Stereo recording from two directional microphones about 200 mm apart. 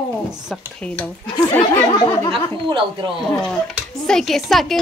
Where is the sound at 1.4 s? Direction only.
10° left (ahead or behind).